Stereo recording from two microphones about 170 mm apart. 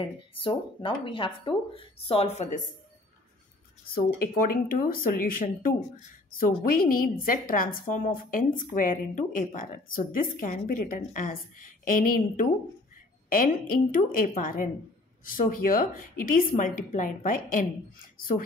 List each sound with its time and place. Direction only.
0.0 s speech: 30° left (ahead or behind)
3.9 s a woman's voice: 60° left (ahead or behind)